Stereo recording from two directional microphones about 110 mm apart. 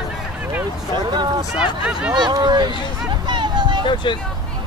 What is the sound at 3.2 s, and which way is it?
Vehicle, 45° right (ahead or behind).